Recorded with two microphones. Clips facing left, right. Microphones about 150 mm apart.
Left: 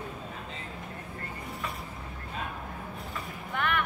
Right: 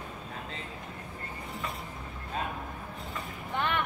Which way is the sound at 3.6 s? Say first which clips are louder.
Left 1 dB; 25° right (ahead or behind).